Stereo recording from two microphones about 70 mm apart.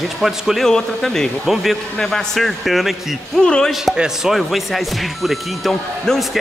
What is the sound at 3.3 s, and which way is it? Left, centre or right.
Speech, centre.